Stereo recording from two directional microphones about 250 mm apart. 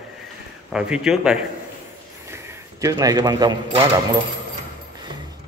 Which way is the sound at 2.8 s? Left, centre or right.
Centre.